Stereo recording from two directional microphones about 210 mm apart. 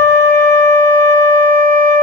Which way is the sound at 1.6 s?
40° right (ahead or behind).